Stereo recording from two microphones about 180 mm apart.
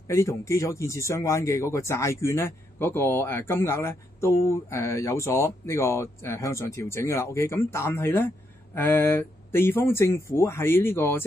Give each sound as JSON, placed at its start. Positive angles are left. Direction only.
{"t": 0.1, "sound": "speech", "side_deg": 15}